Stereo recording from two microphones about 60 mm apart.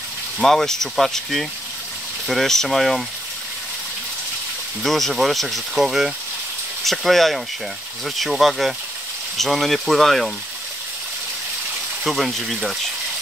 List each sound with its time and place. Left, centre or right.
0.4 s speech: centre
4.8 s speech: centre
12.0 s speech: centre